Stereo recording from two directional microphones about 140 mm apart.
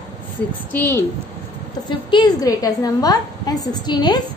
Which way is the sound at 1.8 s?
35° left (ahead or behind).